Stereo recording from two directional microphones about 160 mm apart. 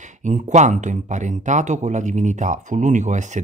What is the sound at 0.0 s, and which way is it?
Speech, 50° right (ahead or behind).